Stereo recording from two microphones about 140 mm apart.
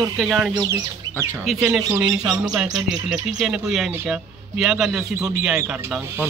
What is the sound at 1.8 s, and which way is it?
Speech, 20° right (ahead or behind).